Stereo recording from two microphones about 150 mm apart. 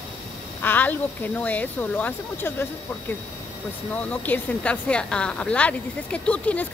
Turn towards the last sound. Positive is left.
turn(degrees=10)  # may be behind; listen again after turning